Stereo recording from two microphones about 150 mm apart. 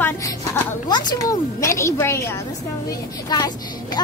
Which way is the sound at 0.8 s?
25° left (ahead or behind).